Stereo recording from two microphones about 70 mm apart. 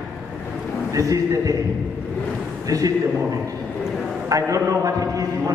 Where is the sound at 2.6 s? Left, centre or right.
Right.